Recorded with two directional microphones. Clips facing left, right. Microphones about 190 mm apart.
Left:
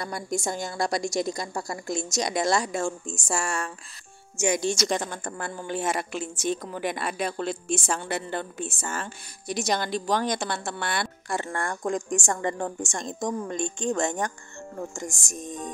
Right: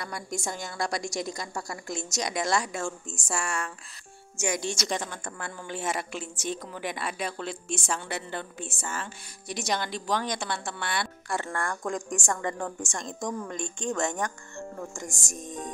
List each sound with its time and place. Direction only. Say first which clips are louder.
0.0 s a woman's voice: left 5 dB; 35° left (ahead or behind)
5.8 s a woman's voice: left 3 dB; 50° left (ahead or behind)
11.2 s a woman's voice: left 1 dB; 20° left (ahead or behind)